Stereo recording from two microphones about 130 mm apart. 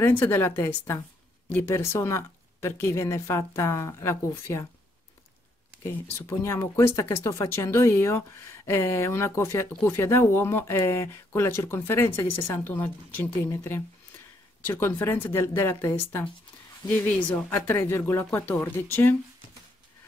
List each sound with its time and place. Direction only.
0.0 s speech: 15° left (ahead or behind)
5.9 s speech: 20° left (ahead or behind)